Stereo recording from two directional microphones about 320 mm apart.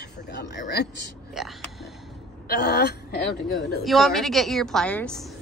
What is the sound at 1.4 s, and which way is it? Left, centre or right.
Speech, centre.